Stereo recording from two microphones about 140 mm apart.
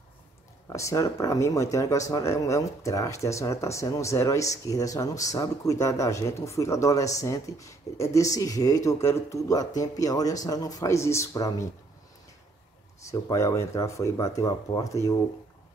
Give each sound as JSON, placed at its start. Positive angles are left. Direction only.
{"t": 0.7, "sound": "speech", "side_deg": 20}
{"t": 13.0, "sound": "speech", "side_deg": 20}